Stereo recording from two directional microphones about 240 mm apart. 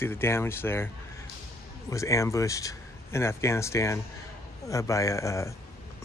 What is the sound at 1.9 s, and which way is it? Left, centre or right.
Speech, centre.